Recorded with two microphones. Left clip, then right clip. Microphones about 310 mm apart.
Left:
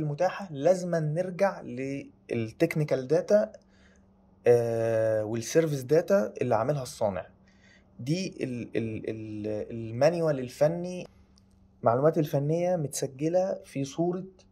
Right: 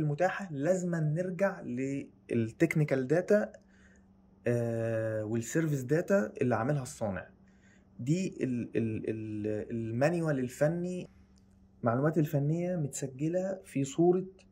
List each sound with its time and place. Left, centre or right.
0.0 s speech: centre
5.0 s speech: centre
5.9 s speech: centre
12.5 s speech: centre
13.5 s speech: centre